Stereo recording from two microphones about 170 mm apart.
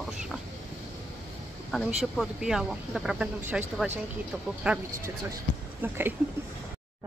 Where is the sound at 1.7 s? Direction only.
Centre (ahead or behind).